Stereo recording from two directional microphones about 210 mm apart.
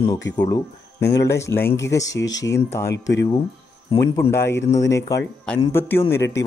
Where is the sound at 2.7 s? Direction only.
15° left (ahead or behind).